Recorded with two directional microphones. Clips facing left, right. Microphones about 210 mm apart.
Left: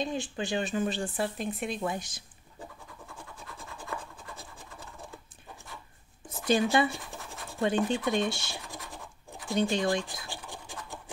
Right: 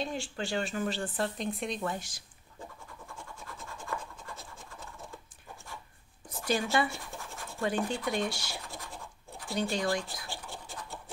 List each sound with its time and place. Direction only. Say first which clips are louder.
0.0 s speech: left 3 dB; 15° left (ahead or behind)
1.8 s speech: left 2 dB; 15° left (ahead or behind)
6.2 s speech: left 5 dB; 20° left (ahead or behind)
9.5 s scratch: left 4 dB; 20° left (ahead or behind)